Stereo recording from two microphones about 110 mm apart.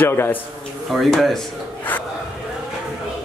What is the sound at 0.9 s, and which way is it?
Speech, centre (ahead or behind).